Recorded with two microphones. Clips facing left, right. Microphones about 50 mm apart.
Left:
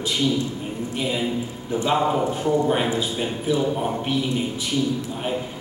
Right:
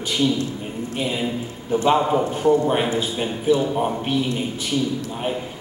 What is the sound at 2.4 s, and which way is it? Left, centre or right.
Speech, centre.